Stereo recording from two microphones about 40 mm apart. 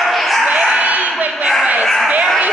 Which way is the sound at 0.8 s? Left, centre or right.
Right.